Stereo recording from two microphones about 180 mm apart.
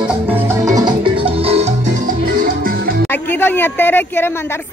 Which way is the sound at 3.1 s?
10° left (ahead or behind).